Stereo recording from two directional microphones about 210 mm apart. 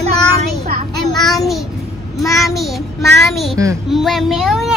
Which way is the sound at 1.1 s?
Centre (ahead or behind).